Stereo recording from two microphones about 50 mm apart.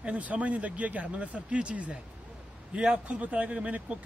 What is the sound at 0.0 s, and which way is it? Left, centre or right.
Speech, right.